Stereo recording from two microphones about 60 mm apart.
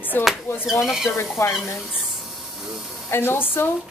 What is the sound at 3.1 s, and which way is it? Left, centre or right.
Speech, left.